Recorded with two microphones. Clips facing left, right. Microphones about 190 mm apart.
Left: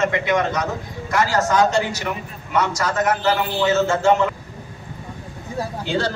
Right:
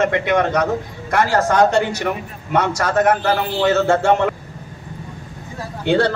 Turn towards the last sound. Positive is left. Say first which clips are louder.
# right 6 dB
turn(degrees=-60)  # may be behind; listen again after turning